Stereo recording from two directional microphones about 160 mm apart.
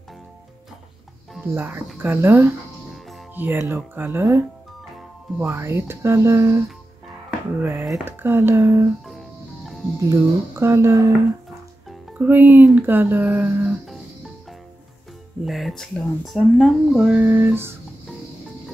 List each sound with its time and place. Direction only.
1.5 s speech: 15° right (ahead or behind)
7.9 s speech: 15° right (ahead or behind)
9.9 s speech: 20° right (ahead or behind)
15.4 s speech: centre (ahead or behind)